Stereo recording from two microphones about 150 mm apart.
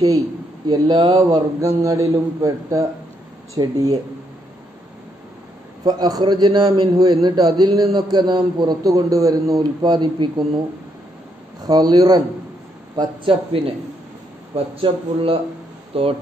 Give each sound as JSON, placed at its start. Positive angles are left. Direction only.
{"t": 0.7, "sound": "a man's voice", "side_deg": -30}
{"t": 5.9, "sound": "a man's voice", "side_deg": -25}
{"t": 11.6, "sound": "a man's voice", "side_deg": -25}